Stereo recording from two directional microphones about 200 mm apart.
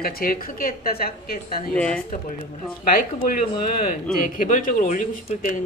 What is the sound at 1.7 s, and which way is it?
Speech, 5° left (ahead or behind).